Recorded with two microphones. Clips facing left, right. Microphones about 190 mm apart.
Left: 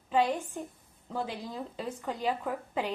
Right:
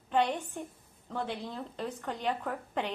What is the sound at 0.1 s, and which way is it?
A woman's voice, 5° left (ahead or behind).